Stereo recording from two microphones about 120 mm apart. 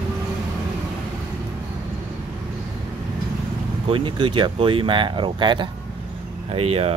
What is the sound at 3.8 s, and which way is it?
Speech, 45° right (ahead or behind).